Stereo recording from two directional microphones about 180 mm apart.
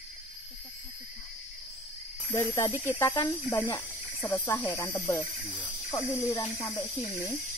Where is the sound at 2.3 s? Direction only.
15° left (ahead or behind).